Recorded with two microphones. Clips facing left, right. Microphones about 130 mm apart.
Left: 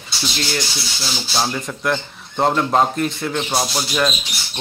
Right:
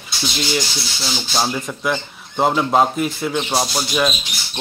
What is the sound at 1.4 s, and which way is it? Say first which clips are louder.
Speech: right 1 dB; 5° right (ahead or behind).